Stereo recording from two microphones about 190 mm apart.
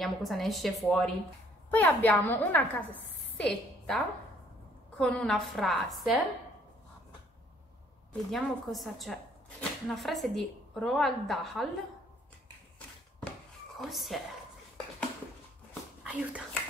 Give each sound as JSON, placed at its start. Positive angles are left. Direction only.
{"t": 0.0, "sound": "a woman's voice", "side_deg": 0}
{"t": 8.1, "sound": "speech", "side_deg": 0}
{"t": 13.7, "sound": "speech", "side_deg": 0}
{"t": 16.0, "sound": "a child's voice", "side_deg": -5}